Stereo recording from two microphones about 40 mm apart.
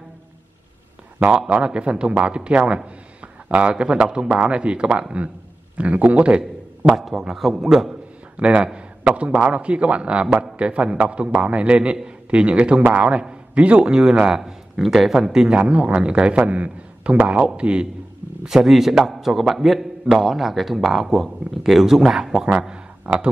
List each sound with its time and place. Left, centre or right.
1.5 s a man's voice: right
7.1 s a man's voice: centre
8.4 s speech: right
10.2 s a man's voice: centre
10.6 s a man's voice: right; by 15.5 s centre
15.5 s a man's voice: right
18.5 s a man's voice: centre
22.6 s speech: right